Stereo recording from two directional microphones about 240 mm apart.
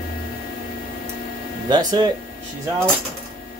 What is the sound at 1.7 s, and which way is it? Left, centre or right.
Speech, centre.